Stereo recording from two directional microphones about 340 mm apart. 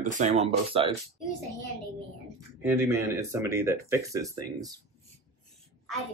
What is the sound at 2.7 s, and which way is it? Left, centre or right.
Speech, centre.